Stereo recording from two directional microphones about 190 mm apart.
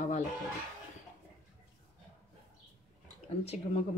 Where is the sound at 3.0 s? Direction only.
35° left (ahead or behind).